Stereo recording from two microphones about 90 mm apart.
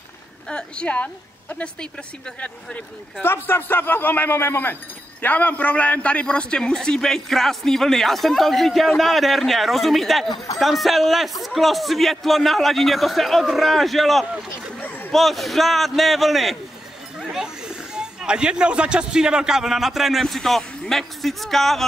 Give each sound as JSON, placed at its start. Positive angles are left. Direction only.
{"t": 0.5, "sound": "a woman's voice", "side_deg": 10}
{"t": 3.2, "sound": "a man's voice", "side_deg": 25}
{"t": 10.3, "sound": "speech", "side_deg": 45}
{"t": 10.6, "sound": "a man's voice", "side_deg": 0}
{"t": 14.8, "sound": "a sound", "side_deg": 20}
{"t": 15.1, "sound": "a man's voice", "side_deg": 0}